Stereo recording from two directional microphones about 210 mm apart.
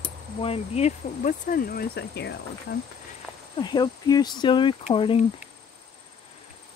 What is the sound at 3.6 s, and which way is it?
Speech, 20° left (ahead or behind).